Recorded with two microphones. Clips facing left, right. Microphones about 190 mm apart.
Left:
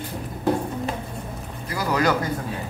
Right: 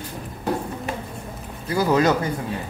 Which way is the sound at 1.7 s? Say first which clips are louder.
Right 4 dB; 25° right (ahead or behind).